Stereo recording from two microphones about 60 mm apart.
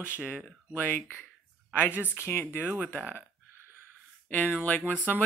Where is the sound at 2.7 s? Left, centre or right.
Right.